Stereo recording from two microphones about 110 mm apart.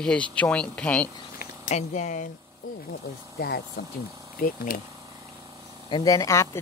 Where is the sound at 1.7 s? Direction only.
90° left.